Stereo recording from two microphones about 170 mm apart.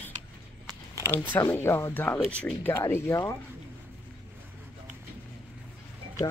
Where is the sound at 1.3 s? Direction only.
15° left (ahead or behind).